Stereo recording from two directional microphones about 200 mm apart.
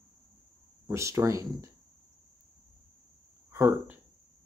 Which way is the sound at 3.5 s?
10° right (ahead or behind).